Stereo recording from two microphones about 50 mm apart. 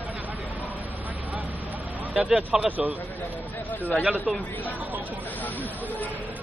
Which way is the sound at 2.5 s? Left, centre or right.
Right.